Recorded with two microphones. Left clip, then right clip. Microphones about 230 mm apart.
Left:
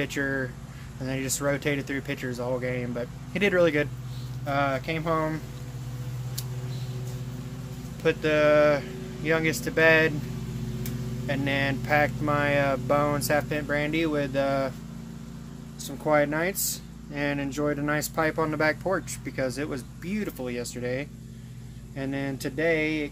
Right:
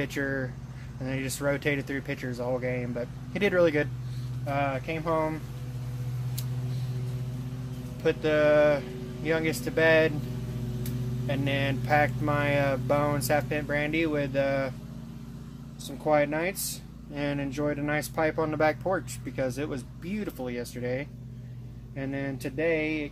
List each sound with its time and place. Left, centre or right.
0.0 s speech: centre
8.0 s speech: centre
11.2 s speech: centre
15.8 s speech: centre